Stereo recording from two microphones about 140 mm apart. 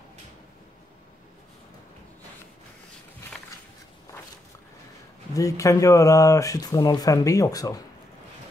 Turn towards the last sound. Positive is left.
turn(degrees=25)  # may be behind; listen again after turning